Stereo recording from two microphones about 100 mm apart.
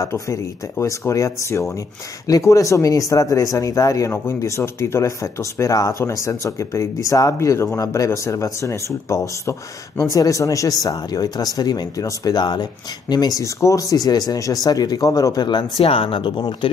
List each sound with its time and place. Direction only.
0.0 s speech: 30° left (ahead or behind)
13.4 s speech: 30° left (ahead or behind)
15.8 s speech: 70° left (ahead or behind)